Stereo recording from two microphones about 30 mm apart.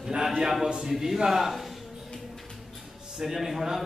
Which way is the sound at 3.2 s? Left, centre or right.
Centre.